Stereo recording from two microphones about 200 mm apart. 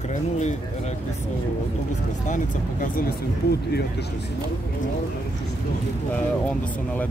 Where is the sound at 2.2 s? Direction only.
40° left (ahead or behind).